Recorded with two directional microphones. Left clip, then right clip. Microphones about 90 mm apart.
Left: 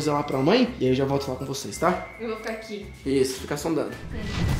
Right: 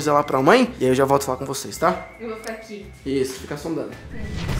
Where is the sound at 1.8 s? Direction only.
25° right (ahead or behind).